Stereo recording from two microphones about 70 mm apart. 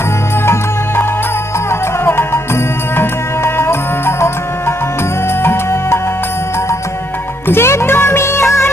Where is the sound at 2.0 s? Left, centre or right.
Left.